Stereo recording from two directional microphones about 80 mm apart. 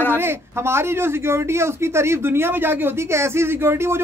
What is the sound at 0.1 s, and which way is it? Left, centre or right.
Speech, right.